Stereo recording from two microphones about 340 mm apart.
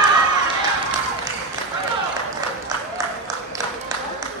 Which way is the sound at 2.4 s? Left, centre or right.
Centre.